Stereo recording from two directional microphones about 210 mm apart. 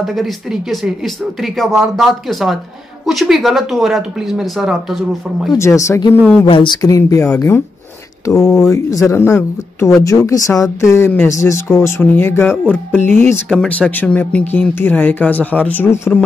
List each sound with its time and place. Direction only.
0.0 s speech: centre (ahead or behind)
5.5 s speech: 15° left (ahead or behind)